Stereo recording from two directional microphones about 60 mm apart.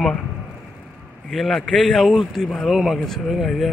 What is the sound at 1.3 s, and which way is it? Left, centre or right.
Speech, centre.